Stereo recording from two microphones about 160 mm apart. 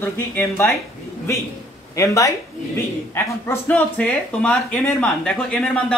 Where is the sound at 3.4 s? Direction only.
10° left (ahead or behind).